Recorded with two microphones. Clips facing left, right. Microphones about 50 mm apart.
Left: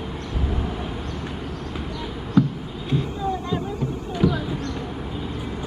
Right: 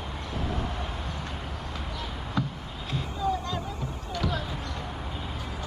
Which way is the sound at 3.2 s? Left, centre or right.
Left.